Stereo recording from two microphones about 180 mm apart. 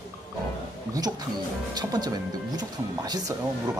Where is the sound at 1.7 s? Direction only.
20° right (ahead or behind).